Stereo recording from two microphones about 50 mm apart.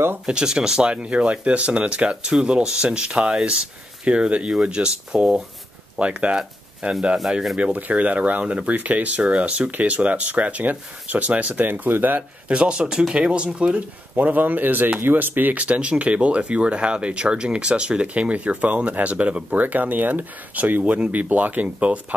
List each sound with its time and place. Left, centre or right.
0.3 s speech: centre; by 12.2 s right
12.2 s speech: right